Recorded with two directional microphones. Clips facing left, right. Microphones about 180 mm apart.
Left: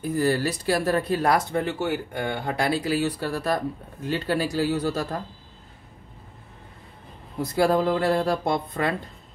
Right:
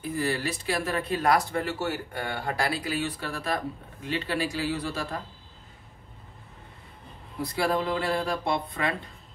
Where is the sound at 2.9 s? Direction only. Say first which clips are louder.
Left 6 dB; 35° left (ahead or behind).